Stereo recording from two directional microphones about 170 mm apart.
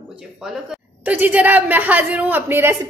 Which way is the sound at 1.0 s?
10° right (ahead or behind).